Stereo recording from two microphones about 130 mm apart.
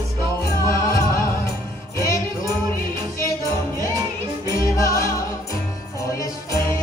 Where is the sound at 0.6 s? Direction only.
25° left (ahead or behind).